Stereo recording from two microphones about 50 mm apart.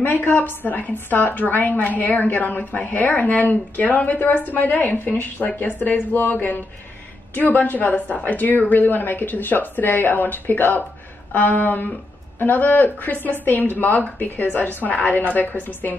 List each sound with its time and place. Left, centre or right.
0.0 s a woman's voice: left